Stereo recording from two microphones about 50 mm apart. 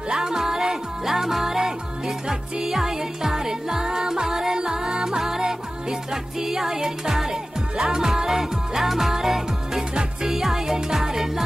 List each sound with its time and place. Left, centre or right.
0.1 s music: centre